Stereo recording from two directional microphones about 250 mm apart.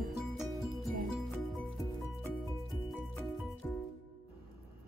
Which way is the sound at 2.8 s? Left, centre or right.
Centre.